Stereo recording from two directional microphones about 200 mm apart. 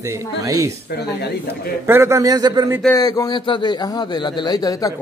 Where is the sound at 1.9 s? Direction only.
15° right (ahead or behind).